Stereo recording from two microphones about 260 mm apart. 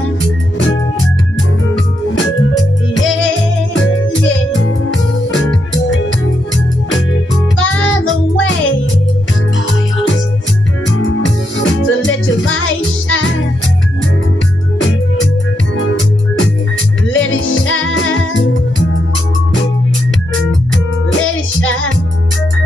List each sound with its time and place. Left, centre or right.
3.0 s music: left
7.5 s music: left
11.1 s music: left
17.1 s music: left
21.2 s music: left